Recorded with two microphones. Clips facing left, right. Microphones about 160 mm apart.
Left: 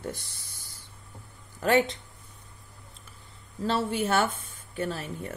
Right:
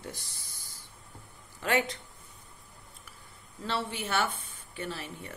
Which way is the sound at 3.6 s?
45° left (ahead or behind).